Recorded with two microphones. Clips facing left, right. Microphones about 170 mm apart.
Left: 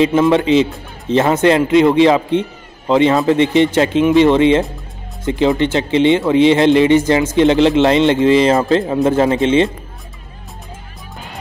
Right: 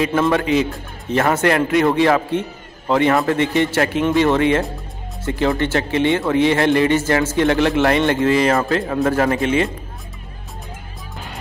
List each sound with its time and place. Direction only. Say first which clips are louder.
0.0 s a man's voice: left 5 dB; 20° left (ahead or behind)